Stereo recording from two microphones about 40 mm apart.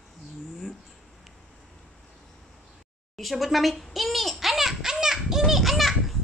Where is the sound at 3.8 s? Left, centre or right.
Centre.